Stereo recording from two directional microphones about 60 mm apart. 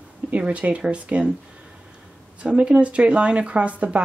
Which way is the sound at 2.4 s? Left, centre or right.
Centre.